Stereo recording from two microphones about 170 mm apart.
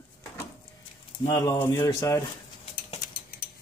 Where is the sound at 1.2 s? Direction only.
20° left (ahead or behind).